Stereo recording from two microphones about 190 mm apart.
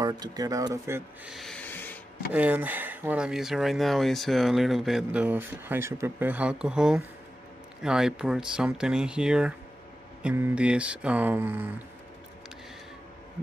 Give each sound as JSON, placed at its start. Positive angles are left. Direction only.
{"t": 0.0, "sound": "speech", "side_deg": -20}
{"t": 1.3, "sound": "rub", "side_deg": 5}
{"t": 2.3, "sound": "speech", "side_deg": -10}